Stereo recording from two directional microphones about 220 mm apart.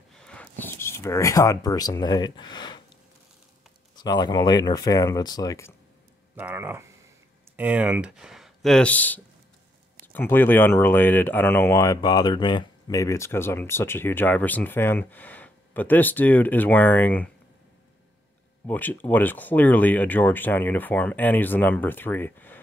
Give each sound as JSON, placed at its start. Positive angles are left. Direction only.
{"t": 0.1, "sound": "a sound", "side_deg": 5}
{"t": 3.9, "sound": "speech", "side_deg": 20}
{"t": 6.3, "sound": "speech", "side_deg": -10}
{"t": 18.7, "sound": "speech", "side_deg": 10}